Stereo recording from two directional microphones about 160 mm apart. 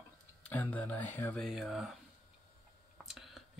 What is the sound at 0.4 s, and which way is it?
Speech, 10° left (ahead or behind).